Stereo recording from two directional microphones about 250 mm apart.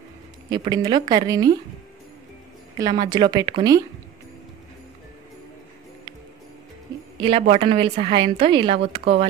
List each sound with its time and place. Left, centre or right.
0.5 s a woman's voice: centre
2.8 s a woman's voice: centre
7.2 s a woman's voice: right